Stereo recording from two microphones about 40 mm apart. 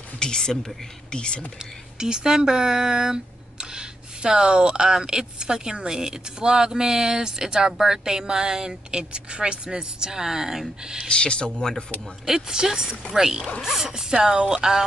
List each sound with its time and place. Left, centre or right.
0.2 s speech: centre
1.6 s speech: centre
11.1 s speech: left
12.3 s speech: centre